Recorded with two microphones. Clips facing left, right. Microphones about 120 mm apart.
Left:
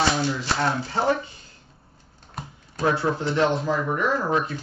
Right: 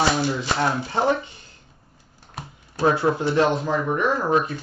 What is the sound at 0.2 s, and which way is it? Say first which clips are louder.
Speech: right 2 dB; 15° right (ahead or behind).